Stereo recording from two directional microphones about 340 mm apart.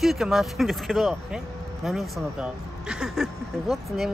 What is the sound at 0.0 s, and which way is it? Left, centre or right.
Speech, centre.